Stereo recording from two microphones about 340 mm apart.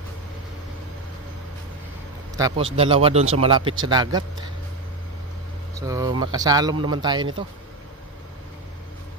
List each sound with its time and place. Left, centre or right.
2.3 s a man's voice: centre
5.8 s speech: centre